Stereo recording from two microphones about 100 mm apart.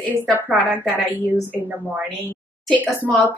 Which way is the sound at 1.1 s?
20° right (ahead or behind).